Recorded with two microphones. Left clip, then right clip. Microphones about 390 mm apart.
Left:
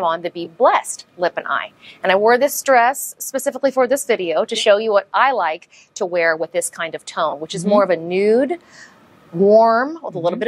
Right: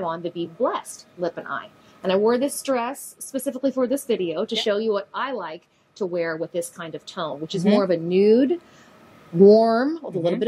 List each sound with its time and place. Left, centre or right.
0.0 s a woman's voice: left